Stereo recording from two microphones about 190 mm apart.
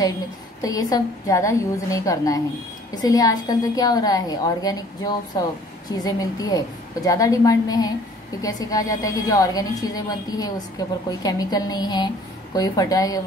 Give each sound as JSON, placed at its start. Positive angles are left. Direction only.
{"t": 0.6, "sound": "a woman's voice", "side_deg": 20}